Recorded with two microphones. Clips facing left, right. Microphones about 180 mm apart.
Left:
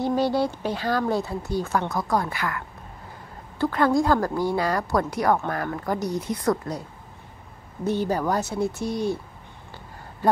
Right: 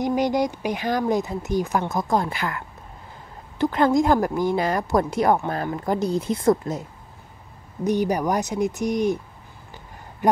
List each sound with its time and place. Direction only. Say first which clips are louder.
0.0 s speech: right 1 dB; 15° right (ahead or behind)